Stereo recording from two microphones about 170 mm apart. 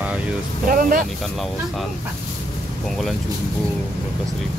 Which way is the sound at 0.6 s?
55° right (ahead or behind).